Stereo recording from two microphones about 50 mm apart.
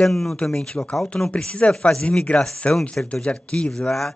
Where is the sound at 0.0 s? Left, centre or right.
Centre.